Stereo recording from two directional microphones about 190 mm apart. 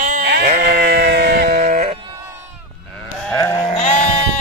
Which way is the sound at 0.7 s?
55° right (ahead or behind).